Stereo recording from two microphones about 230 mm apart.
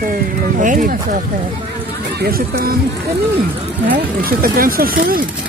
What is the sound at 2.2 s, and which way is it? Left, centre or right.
Speech, right.